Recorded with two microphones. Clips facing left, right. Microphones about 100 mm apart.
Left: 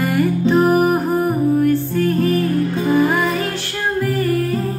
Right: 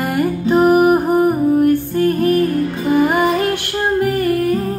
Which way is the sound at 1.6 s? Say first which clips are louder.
Right 2 dB; 55° right (ahead or behind).